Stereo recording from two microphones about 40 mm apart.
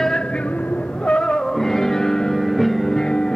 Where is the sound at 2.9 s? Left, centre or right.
Centre.